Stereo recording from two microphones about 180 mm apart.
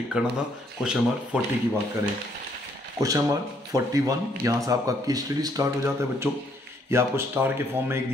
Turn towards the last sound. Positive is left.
turn(degrees=-15)  # may be behind; listen again after turning